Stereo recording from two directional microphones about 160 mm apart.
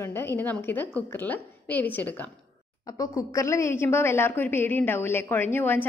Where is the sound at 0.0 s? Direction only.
15° left (ahead or behind).